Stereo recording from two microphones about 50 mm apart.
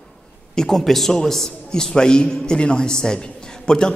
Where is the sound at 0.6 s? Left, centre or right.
Centre.